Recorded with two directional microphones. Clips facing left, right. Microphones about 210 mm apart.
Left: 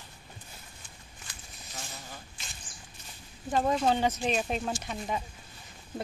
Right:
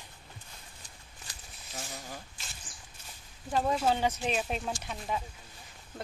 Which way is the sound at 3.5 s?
5° right (ahead or behind).